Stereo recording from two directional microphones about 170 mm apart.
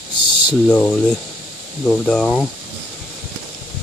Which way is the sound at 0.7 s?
10° left (ahead or behind).